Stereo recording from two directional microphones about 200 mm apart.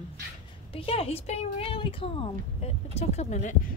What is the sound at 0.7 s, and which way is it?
Speech, 30° left (ahead or behind).